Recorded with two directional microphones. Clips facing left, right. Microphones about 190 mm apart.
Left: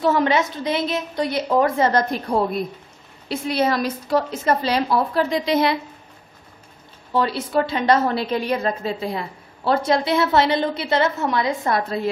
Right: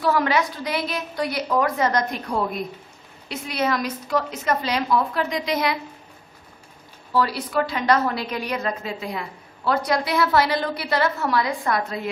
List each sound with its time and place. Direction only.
0.0 s a woman's voice: 25° left (ahead or behind)
7.1 s a woman's voice: 25° left (ahead or behind)